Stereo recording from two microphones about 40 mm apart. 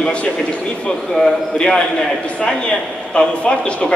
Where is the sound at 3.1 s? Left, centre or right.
Left.